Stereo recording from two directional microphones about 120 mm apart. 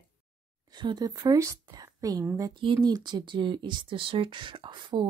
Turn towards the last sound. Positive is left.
turn(degrees=-40)  # may be behind; listen again after turning